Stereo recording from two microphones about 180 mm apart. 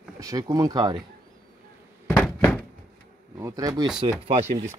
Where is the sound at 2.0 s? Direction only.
10° left (ahead or behind).